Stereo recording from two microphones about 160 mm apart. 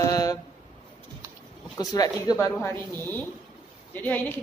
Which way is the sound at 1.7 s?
25° left (ahead or behind).